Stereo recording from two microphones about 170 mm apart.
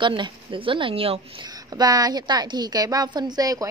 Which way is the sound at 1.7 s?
20° right (ahead or behind).